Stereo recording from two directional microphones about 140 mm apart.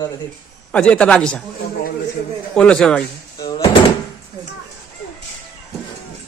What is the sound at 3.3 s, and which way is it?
Drawer open or close, 35° left (ahead or behind).